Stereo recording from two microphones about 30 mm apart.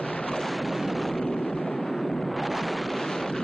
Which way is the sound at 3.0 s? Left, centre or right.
Centre.